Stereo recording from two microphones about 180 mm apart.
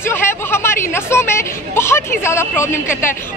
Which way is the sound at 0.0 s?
15° left (ahead or behind).